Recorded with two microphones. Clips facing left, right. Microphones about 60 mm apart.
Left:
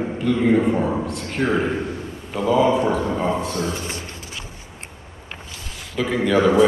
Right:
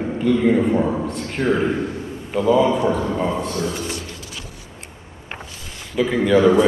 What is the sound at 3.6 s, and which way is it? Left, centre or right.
Speech, left.